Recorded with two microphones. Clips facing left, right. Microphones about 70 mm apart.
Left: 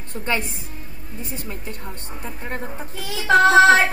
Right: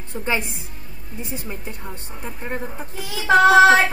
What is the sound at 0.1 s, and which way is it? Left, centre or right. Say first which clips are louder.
A woman's voice: right 1 dB; centre.